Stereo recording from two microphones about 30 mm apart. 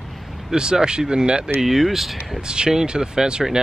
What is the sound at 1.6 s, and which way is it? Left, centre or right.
Speech, centre.